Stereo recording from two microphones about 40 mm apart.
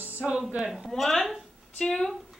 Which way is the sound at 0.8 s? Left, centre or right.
Centre.